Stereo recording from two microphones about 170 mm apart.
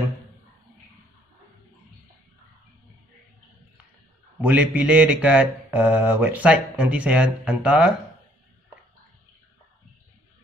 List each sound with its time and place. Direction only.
4.4 s speech: 10° right (ahead or behind)